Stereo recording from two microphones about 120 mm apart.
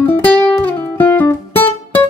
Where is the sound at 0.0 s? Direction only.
15° left (ahead or behind).